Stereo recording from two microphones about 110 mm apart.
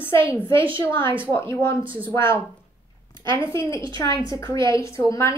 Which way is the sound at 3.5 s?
25° left (ahead or behind).